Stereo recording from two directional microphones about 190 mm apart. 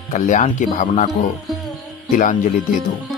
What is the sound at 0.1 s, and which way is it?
Speech, 40° left (ahead or behind).